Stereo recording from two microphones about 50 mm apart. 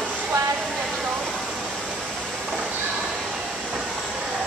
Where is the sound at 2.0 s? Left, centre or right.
Centre.